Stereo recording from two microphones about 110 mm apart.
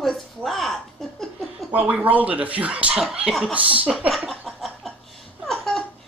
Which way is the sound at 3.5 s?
10° right (ahead or behind).